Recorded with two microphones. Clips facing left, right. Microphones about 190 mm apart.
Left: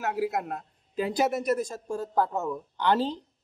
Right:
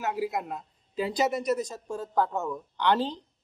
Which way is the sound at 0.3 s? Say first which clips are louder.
Left 1 dB; 65° left (ahead or behind).